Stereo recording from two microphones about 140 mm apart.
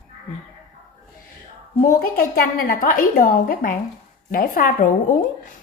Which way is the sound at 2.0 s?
90° left.